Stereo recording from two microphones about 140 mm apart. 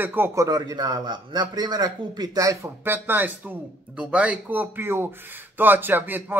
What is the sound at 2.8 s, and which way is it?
Speech, 15° right (ahead or behind).